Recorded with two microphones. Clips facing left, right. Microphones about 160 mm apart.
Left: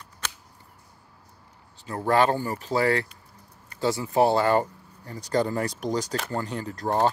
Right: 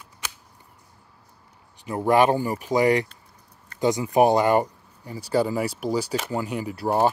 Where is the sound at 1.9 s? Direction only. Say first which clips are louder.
Right 3 dB; 15° right (ahead or behind).